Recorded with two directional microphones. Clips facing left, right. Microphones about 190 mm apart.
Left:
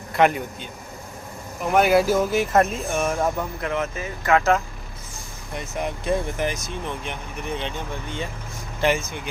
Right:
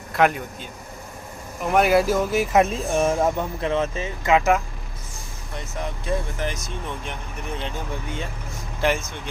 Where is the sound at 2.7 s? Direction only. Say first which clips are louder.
Right 3 dB; 30° right (ahead or behind).